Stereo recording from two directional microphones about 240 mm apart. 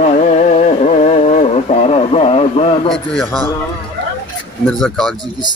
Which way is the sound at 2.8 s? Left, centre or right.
Centre.